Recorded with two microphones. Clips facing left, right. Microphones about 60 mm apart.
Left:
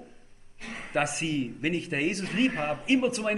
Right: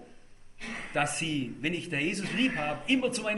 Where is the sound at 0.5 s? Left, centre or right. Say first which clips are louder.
Even; right.